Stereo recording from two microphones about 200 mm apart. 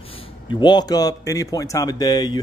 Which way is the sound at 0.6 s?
20° left (ahead or behind).